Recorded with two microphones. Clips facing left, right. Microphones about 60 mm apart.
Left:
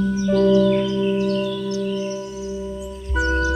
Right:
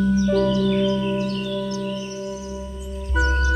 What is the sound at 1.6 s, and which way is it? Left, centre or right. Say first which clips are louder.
Music: left 2 dB; right.